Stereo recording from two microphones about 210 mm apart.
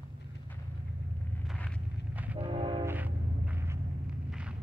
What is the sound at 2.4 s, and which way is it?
Train, 25° right (ahead or behind).